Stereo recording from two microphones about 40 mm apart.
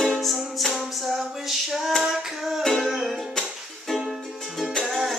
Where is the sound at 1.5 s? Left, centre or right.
Centre.